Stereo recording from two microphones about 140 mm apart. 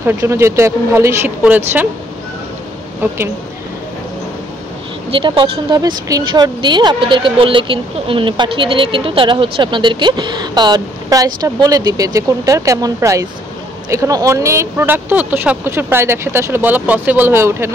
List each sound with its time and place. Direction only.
0.0 s speech: 20° right (ahead or behind)
5.1 s speech: 40° right (ahead or behind)
5.8 s speech: 25° right (ahead or behind)